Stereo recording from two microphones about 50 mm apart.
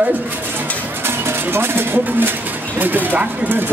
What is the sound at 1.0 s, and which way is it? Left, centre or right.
A man's voice, right.